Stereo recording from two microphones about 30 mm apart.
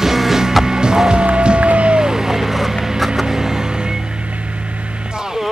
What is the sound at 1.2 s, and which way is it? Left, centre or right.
Music, right.